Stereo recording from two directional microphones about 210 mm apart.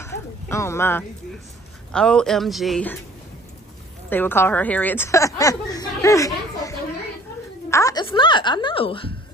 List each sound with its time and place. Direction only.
0.0 s a sound: 15° left (ahead or behind)
1.9 s speech: 5° left (ahead or behind)
4.1 s a woman's voice: 10° left (ahead or behind); by 9.1 s 25° left (ahead or behind)